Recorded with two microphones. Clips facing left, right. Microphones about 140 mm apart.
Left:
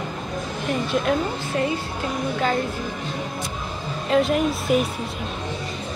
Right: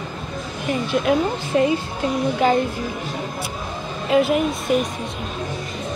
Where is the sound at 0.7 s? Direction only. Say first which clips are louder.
Right 3 dB; centre (ahead or behind).